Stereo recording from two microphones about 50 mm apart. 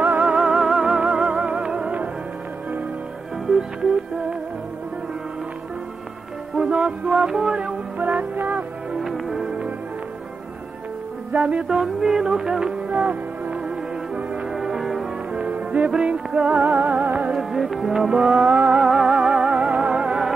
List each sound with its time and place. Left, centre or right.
0.2 s music: centre
3.4 s music: centre
6.5 s music: right
9.0 s music: centre
11.3 s music: right
11.6 s music: centre
14.5 s music: centre
15.3 s music: right
17.3 s music: centre
18.4 s music: right